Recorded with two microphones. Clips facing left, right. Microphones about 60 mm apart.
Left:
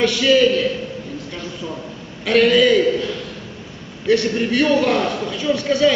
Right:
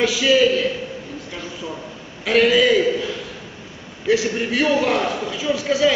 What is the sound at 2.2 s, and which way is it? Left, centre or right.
A man's voice, centre.